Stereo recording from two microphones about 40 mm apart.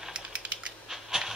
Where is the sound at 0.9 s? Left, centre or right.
Centre.